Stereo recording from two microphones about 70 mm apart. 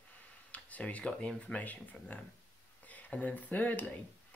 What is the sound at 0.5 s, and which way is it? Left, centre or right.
Speech, left.